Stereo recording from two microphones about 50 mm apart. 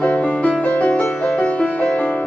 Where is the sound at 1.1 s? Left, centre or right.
Centre.